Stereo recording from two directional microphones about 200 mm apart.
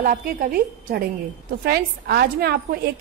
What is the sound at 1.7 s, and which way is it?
A woman's voice, 50° right (ahead or behind).